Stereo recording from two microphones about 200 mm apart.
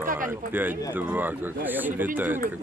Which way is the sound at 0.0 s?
40° right (ahead or behind).